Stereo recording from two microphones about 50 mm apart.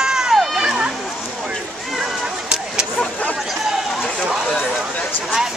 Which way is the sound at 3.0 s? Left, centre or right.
Left.